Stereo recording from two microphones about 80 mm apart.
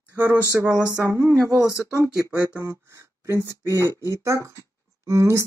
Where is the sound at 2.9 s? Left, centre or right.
Right.